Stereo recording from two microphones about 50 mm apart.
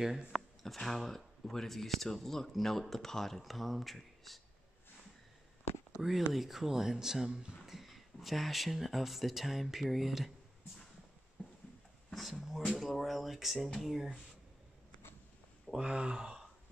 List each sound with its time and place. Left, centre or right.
0.3 s a sound: centre
0.7 s speech: centre
5.9 s speech: centre
7.6 s speech: centre
12.1 s speech: centre
15.7 s speech: centre